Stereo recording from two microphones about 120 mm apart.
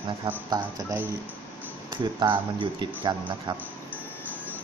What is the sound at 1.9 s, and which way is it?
Speech, 40° right (ahead or behind).